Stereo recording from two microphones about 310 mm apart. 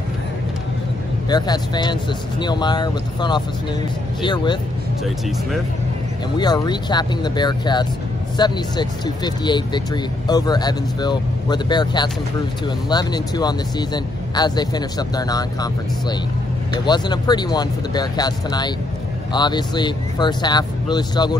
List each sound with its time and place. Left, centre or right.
1.3 s speech: centre
6.3 s speech: centre